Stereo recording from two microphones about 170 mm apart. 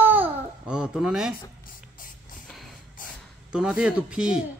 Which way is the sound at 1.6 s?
55° left (ahead or behind).